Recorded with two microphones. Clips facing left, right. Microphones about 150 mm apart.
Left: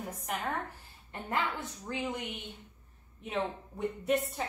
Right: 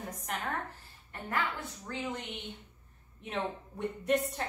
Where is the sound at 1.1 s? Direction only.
20° left (ahead or behind).